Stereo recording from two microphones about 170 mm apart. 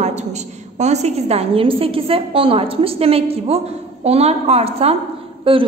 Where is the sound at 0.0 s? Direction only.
40° right (ahead or behind).